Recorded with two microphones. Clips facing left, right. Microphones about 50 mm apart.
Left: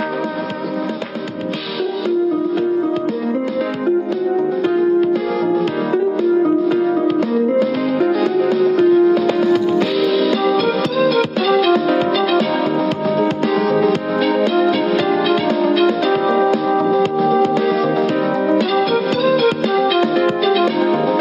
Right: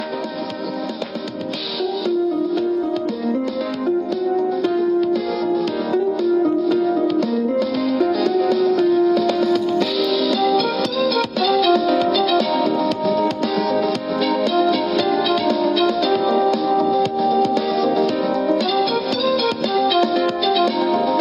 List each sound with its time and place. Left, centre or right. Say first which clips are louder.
3.8 s music: left 2 dB; left